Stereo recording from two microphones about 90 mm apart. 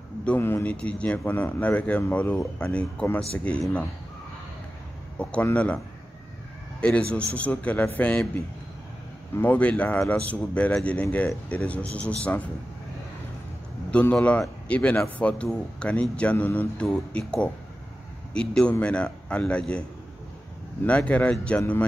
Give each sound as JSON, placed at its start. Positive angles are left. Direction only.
{"t": 0.4, "sound": "a man's voice", "side_deg": 25}
{"t": 0.7, "sound": "speech", "side_deg": 15}
{"t": 5.2, "sound": "speech", "side_deg": 15}
{"t": 6.8, "sound": "speech", "side_deg": 10}
{"t": 9.4, "sound": "speech", "side_deg": 15}
{"t": 14.1, "sound": "speech", "side_deg": 15}
{"t": 20.8, "sound": "speech", "side_deg": 15}